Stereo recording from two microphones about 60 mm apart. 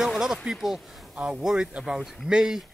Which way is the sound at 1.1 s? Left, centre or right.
Right.